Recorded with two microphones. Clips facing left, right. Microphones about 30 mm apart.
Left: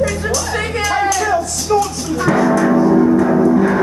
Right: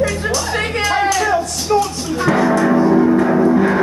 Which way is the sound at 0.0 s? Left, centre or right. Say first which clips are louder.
Even; right.